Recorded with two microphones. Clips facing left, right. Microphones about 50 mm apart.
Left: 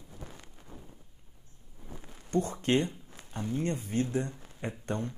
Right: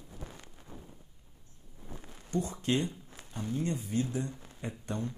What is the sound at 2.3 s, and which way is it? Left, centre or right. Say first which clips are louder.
Speech: left 3 dB; left.